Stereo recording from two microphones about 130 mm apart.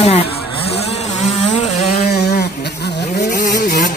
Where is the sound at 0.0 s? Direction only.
50° left (ahead or behind).